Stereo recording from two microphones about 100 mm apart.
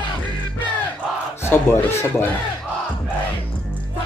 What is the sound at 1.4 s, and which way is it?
Speech, 25° left (ahead or behind).